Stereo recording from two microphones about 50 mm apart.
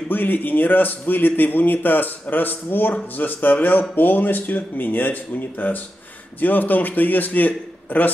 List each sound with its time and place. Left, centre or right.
0.1 s a man's voice: left